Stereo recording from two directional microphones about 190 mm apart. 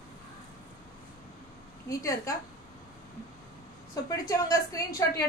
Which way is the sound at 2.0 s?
20° left (ahead or behind).